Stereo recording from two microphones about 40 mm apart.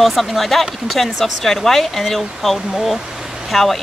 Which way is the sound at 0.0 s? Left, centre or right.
Centre.